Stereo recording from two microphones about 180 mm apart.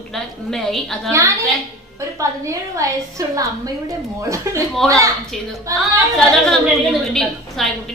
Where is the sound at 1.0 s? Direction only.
15° right (ahead or behind).